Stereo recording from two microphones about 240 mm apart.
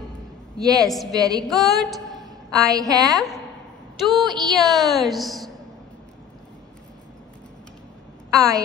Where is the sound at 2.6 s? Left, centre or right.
Centre.